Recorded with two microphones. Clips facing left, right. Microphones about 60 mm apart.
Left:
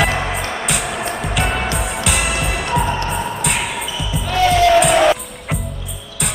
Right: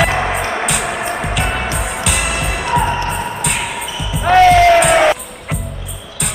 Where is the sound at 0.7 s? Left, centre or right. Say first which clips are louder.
Right 3 dB; centre.